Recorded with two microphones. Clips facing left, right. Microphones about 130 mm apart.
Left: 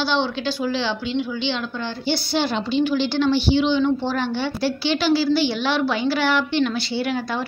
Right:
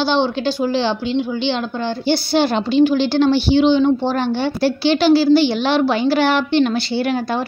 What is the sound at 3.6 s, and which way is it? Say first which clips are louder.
Speech: right 5 dB; 25° right (ahead or behind).